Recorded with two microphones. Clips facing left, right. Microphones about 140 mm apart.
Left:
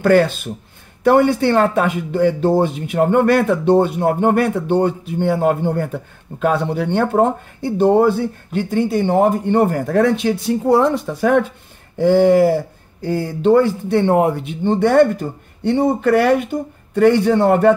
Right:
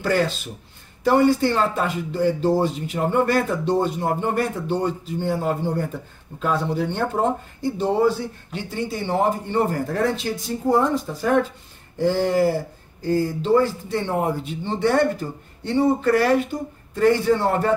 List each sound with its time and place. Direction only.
0.0 s speech: 60° left (ahead or behind)